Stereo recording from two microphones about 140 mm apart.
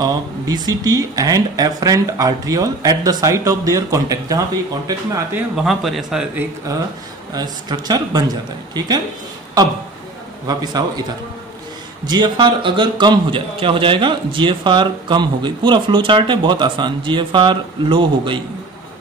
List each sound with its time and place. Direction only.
0.0 s speech: 25° right (ahead or behind)
5.6 s a man's voice: centre (ahead or behind)
7.3 s speech: 30° right (ahead or behind)
10.4 s speech: 30° right (ahead or behind)
12.1 s a man's voice: 35° right (ahead or behind)